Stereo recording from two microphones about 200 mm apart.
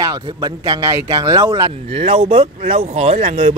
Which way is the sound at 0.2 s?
20° right (ahead or behind).